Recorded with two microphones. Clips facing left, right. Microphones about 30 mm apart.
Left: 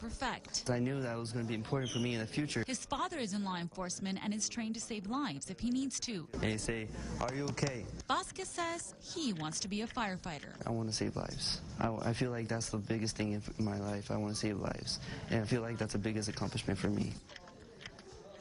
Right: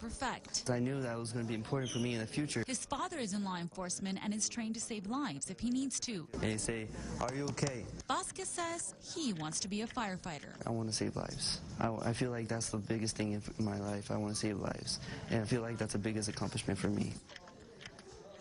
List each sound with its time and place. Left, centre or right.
0.2 s speech: centre
5.1 s speech: centre
5.5 s speech: centre